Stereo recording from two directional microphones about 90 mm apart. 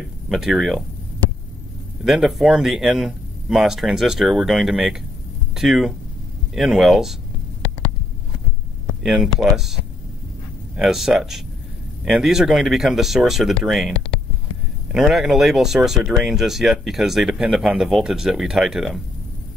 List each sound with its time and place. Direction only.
0.3 s speech: 5° right (ahead or behind)
2.0 s speech: 5° right (ahead or behind)
9.0 s speech: centre (ahead or behind)
10.8 s speech: 5° right (ahead or behind)